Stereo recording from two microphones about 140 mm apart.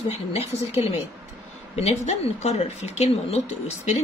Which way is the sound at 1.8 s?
50° left (ahead or behind).